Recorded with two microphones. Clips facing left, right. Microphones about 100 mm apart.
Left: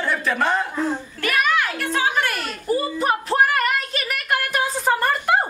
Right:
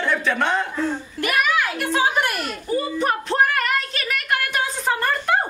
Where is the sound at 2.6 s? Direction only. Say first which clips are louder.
Left 1 dB; 5° left (ahead or behind).